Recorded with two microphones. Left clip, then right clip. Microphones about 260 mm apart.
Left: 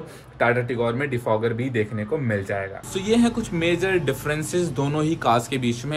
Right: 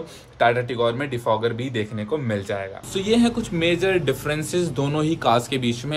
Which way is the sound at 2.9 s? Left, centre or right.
Centre.